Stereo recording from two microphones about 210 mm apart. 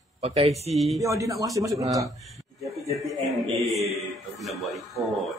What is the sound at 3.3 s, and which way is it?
Speech, centre (ahead or behind).